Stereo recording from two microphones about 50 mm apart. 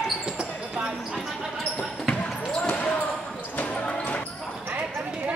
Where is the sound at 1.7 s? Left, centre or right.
Left.